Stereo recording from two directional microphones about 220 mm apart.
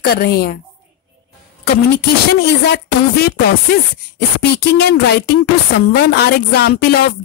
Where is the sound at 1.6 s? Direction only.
45° left (ahead or behind).